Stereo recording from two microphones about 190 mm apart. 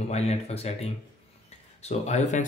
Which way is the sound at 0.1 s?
35° left (ahead or behind).